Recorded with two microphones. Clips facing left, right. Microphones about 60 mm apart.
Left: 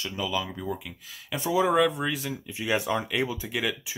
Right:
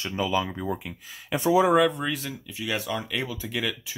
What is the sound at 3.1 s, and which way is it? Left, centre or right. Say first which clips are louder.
Speech: left 2 dB; centre.